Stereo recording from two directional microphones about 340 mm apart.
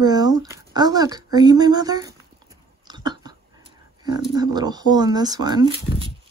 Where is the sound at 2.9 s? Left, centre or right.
Centre.